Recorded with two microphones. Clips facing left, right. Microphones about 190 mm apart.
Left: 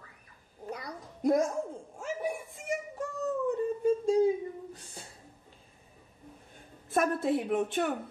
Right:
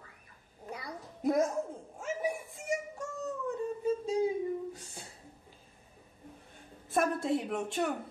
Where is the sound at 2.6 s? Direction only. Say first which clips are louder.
Even; centre (ahead or behind).